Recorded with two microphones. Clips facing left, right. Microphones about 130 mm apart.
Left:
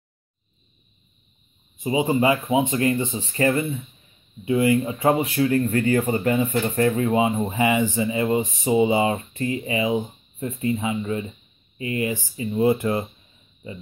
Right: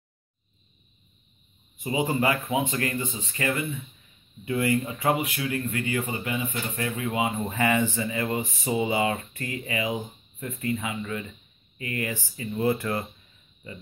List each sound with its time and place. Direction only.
1.8 s speech: 20° left (ahead or behind)
4.5 s speech: 20° left (ahead or behind)